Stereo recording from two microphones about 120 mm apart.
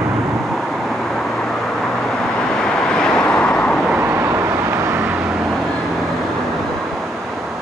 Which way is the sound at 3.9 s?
20° right (ahead or behind).